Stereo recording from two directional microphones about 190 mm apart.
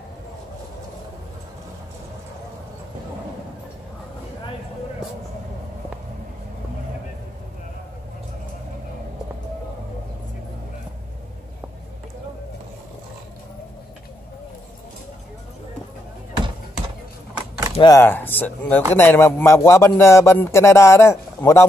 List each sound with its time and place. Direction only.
17.3 s keys jangling: 15° right (ahead or behind)
17.7 s speech: 20° left (ahead or behind)
18.0 s a man's voice: 10° left (ahead or behind)